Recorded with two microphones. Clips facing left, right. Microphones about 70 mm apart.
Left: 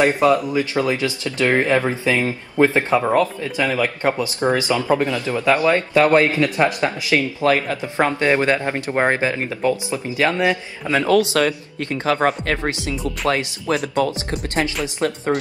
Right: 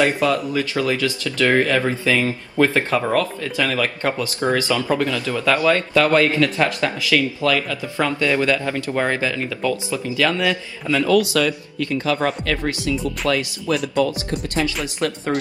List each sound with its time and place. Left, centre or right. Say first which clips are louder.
0.0 s speech: left 3 dB; left
12.6 s speech: right 1 dB; left
15.0 s speech: left 3 dB; left